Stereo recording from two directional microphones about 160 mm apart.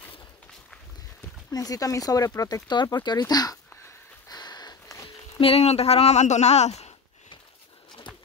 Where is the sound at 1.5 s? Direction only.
20° left (ahead or behind).